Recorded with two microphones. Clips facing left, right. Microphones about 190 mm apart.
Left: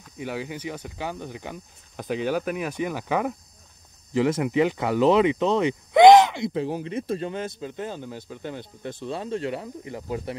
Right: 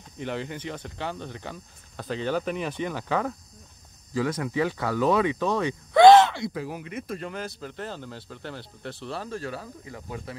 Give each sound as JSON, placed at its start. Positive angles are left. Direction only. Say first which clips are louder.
{"t": 0.2, "sound": "speech", "louder": "left 1 dB", "side_deg": 10}